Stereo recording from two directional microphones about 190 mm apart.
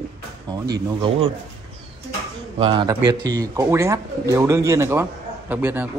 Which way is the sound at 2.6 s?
30° right (ahead or behind).